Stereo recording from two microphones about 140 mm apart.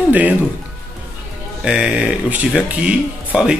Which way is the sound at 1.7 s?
5° right (ahead or behind).